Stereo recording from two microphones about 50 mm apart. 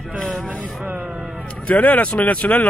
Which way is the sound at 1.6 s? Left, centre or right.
Left.